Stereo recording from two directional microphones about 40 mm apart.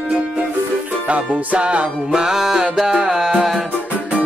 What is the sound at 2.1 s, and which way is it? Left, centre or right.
Music, centre.